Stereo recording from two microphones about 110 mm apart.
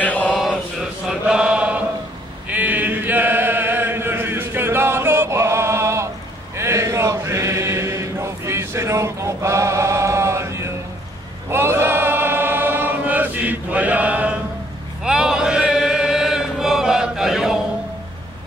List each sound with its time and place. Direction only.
0.0 s mantra: 15° left (ahead or behind)
1.0 s chant: 5° right (ahead or behind); by 6.0 s 25° right (ahead or behind)
6.5 s a sound: 25° right (ahead or behind)
11.5 s choir: 20° right (ahead or behind)
15.0 s chant: 5° right (ahead or behind)